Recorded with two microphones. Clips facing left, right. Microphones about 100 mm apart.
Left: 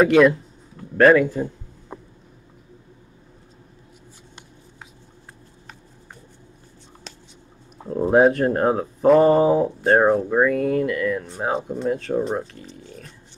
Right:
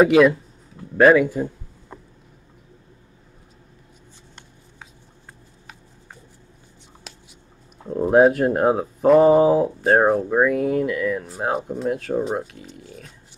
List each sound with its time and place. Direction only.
0.0 s speech: centre (ahead or behind)
1.9 s a sound: 15° left (ahead or behind)
7.9 s speech: centre (ahead or behind)